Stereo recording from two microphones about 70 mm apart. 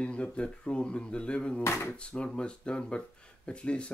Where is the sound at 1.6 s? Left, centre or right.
Left.